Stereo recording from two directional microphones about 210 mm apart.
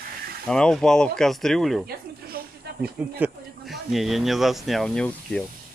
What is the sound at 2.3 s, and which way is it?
Snake, 45° right (ahead or behind).